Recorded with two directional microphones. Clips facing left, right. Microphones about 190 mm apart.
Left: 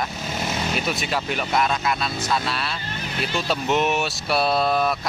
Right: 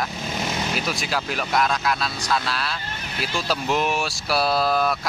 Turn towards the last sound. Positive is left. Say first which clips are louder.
# even
turn(degrees=0)  # may be behind; listen again after turning